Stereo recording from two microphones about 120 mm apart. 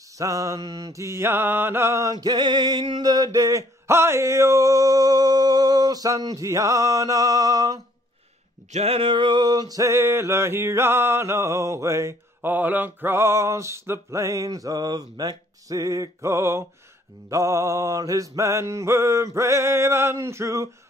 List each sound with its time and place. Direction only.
0.2 s mantra: 25° right (ahead or behind)
8.7 s male singing: 55° right (ahead or behind); by 20.7 s 25° right (ahead or behind)